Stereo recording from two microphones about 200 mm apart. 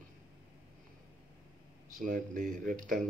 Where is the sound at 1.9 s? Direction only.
40° right (ahead or behind).